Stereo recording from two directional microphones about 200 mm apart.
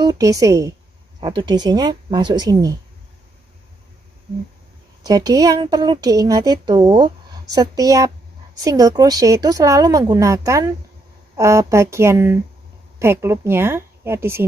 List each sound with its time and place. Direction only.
0.0 s a woman's voice: 15° right (ahead or behind)
5.0 s a woman's voice: 20° right (ahead or behind)